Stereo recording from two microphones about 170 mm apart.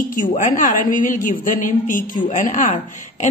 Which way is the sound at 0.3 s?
45° left (ahead or behind).